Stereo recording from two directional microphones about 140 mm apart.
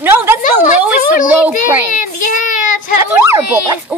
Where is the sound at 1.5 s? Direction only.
70° left (ahead or behind).